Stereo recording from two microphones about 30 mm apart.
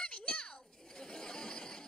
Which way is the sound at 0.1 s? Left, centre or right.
Left.